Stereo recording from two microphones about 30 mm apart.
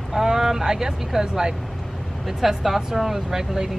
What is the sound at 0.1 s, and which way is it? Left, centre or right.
Speech, centre.